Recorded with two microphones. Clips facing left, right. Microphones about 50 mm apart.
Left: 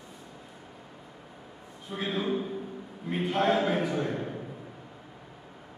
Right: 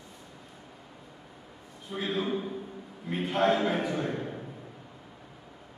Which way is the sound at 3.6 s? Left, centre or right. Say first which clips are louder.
Left 1 dB; centre.